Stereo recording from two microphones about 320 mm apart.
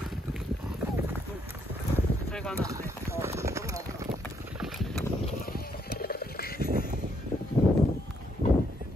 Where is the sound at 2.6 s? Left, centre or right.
Centre.